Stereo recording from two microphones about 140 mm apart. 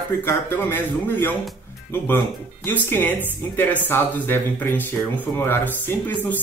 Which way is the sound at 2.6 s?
15° left (ahead or behind).